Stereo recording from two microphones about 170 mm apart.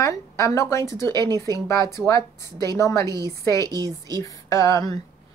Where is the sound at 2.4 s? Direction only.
25° right (ahead or behind).